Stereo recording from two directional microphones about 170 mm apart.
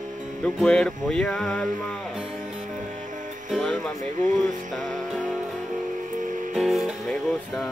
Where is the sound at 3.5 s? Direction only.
Centre (ahead or behind).